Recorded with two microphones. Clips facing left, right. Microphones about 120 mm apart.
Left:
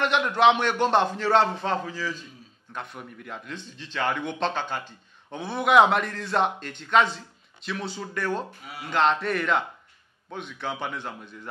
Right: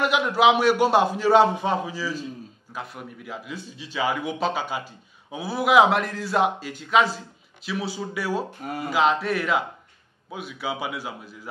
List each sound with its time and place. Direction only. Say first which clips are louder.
0.0 s a man's voice: right 1 dB; 5° right (ahead or behind)
8.5 s speech: right 9 dB; 45° right (ahead or behind)
8.9 s a man's voice: right 1 dB; 5° right (ahead or behind)